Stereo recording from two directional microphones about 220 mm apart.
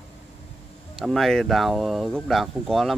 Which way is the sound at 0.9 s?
Centre (ahead or behind).